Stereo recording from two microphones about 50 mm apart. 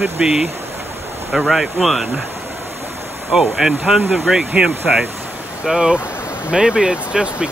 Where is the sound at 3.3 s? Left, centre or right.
Centre.